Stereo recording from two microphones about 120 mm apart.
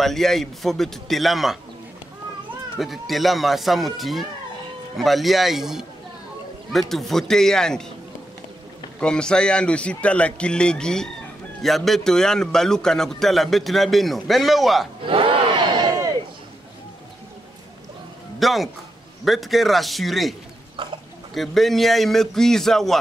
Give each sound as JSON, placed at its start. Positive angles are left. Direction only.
{"t": 0.0, "sound": "a man's voice", "side_deg": 5}
{"t": 2.8, "sound": "a man's voice", "side_deg": 0}
{"t": 9.0, "sound": "a man's voice", "side_deg": 5}
{"t": 15.0, "sound": "crowd", "side_deg": -45}
{"t": 18.4, "sound": "a man's voice", "side_deg": 0}
{"t": 21.4, "sound": "a man's voice", "side_deg": 0}